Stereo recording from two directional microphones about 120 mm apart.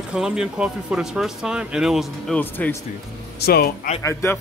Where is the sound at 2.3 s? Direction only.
15° left (ahead or behind).